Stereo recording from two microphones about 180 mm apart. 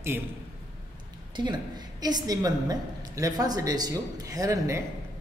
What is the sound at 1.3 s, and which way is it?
A woman's voice, 25° right (ahead or behind).